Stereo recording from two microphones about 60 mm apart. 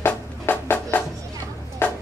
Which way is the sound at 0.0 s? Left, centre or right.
Left.